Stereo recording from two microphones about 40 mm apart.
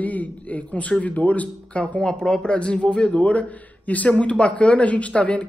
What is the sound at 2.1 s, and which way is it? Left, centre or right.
A man's voice, centre.